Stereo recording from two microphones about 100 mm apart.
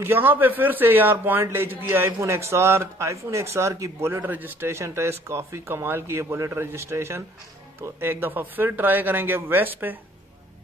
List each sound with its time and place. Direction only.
0.0 s a man's voice: 20° right (ahead or behind)